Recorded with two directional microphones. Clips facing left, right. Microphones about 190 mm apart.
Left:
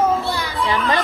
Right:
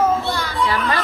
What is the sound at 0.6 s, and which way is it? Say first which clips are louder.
Speech: left 2 dB; 20° left (ahead or behind).